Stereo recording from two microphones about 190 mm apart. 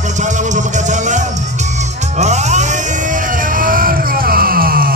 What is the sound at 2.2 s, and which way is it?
Music, 35° right (ahead or behind).